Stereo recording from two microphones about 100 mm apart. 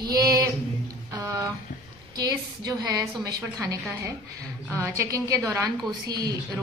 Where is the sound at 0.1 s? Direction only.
35° right (ahead or behind).